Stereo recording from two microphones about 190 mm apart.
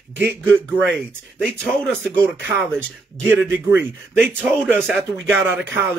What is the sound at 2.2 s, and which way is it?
Speech, 10° right (ahead or behind).